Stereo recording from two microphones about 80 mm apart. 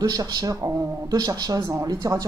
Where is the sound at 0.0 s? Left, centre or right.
Right.